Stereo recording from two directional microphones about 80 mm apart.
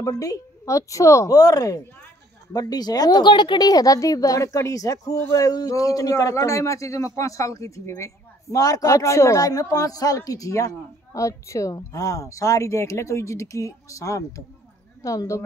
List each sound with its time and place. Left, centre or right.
0.0 s a woman's voice: left
3.6 s a woman's voice: left